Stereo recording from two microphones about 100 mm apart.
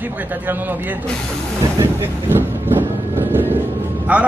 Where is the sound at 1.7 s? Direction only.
25° right (ahead or behind).